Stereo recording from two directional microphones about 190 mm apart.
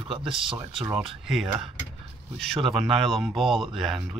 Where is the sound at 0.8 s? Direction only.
5° right (ahead or behind).